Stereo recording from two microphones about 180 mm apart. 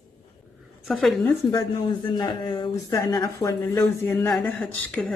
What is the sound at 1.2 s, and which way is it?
A woman's voice, 20° left (ahead or behind).